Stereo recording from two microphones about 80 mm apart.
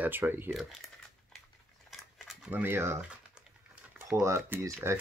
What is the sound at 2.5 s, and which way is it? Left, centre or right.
Speech, right.